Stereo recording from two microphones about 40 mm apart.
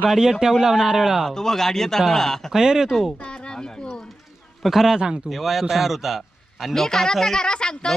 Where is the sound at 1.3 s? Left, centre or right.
Centre.